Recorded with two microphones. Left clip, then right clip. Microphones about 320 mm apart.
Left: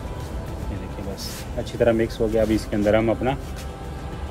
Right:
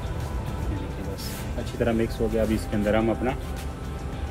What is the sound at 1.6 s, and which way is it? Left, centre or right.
Speech, left.